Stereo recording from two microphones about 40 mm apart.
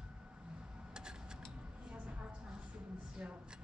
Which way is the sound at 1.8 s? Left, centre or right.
Right.